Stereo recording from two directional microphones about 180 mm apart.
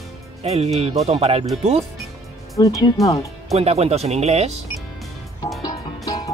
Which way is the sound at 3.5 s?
35° right (ahead or behind).